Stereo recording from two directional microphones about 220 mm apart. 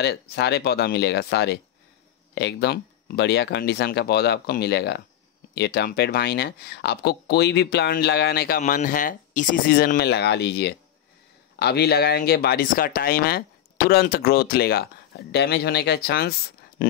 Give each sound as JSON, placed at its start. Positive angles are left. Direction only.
{"t": 0.0, "sound": "speech", "side_deg": 45}